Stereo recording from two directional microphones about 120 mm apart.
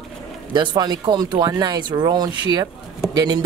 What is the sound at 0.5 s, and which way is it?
Speech, 35° right (ahead or behind).